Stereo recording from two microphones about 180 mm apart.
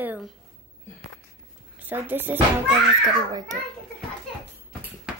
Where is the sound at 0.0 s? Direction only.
10° right (ahead or behind).